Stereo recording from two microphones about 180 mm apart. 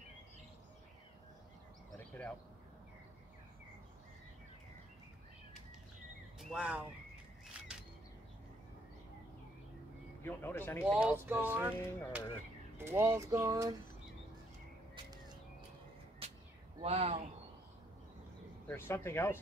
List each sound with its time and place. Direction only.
1.9 s a sound: 10° left (ahead or behind)
6.4 s speech: 5° right (ahead or behind)
7.4 s single-lens reflex camera: 5° right (ahead or behind)
10.2 s speech: 10° left (ahead or behind)
10.9 s speech: 5° right (ahead or behind)
16.2 s whip: 30° right (ahead or behind)
16.8 s speech: 35° right (ahead or behind)
18.7 s speech: 10° left (ahead or behind)